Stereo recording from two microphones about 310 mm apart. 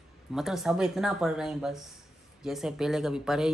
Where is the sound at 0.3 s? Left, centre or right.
Centre.